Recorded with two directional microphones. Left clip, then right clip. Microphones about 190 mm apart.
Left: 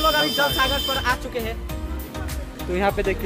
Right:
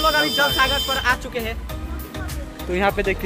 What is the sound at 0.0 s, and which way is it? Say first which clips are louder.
Speech: right 2 dB; 15° left (ahead or behind).